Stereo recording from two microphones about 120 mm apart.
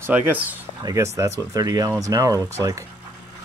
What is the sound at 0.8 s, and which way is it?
Speech, 25° right (ahead or behind).